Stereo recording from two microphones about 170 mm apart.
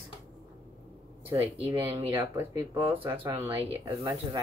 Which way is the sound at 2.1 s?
15° right (ahead or behind).